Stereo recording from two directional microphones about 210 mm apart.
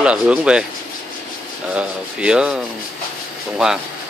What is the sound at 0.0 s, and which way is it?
Speech, 5° right (ahead or behind).